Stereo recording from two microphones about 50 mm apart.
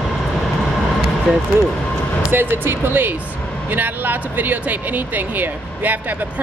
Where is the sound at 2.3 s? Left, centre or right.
Right.